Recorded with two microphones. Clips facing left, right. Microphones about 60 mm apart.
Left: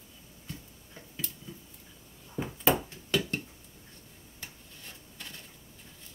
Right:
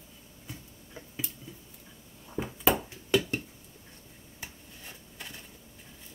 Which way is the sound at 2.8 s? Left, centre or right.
Centre.